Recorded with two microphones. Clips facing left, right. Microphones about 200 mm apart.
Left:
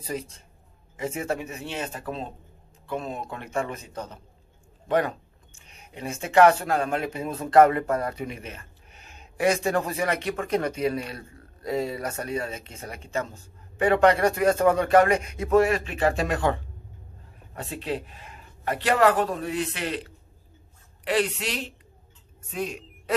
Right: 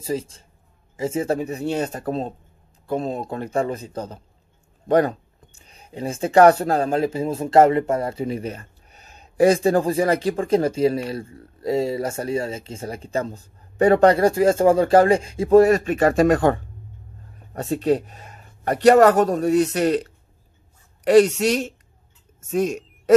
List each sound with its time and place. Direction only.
0.9 s speech: 30° right (ahead or behind); by 23.1 s 45° right (ahead or behind)